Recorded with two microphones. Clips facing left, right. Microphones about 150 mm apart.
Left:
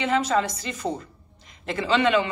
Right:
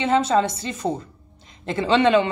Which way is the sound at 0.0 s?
30° right (ahead or behind).